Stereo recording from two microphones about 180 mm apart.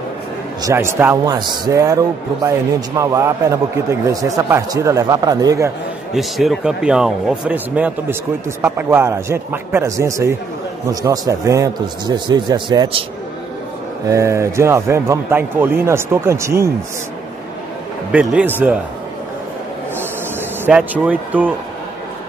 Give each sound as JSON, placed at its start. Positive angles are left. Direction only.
{"t": 0.6, "sound": "speech", "side_deg": -15}
{"t": 6.1, "sound": "a man's voice", "side_deg": 0}
{"t": 14.0, "sound": "speech", "side_deg": -15}
{"t": 18.1, "sound": "speech", "side_deg": -5}
{"t": 20.6, "sound": "speech", "side_deg": -5}